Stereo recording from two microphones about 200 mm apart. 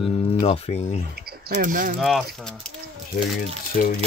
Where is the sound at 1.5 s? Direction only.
40° right (ahead or behind).